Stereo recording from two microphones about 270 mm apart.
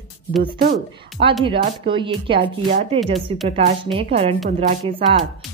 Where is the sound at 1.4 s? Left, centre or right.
Centre.